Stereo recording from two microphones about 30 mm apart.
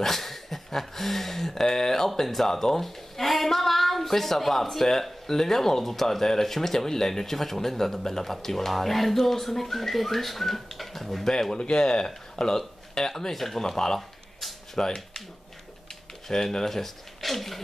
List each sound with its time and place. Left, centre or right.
0.0 s a sound: centre
2.2 s a woman's voice: centre
11.5 s speech: left
16.3 s speech: centre